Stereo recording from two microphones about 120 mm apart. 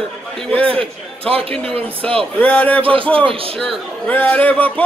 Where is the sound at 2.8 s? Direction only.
50° right (ahead or behind).